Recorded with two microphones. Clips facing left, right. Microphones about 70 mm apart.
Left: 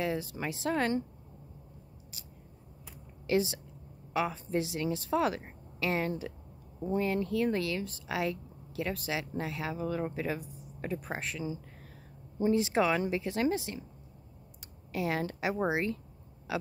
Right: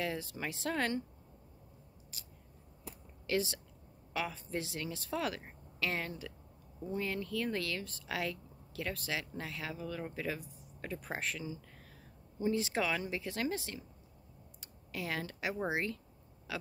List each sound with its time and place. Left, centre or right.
0.0 s speech: centre
3.3 s a woman's voice: centre
11.0 s speech: centre
12.4 s a woman's voice: left
14.9 s a woman's voice: left
15.7 s speech: centre
16.5 s a sound: centre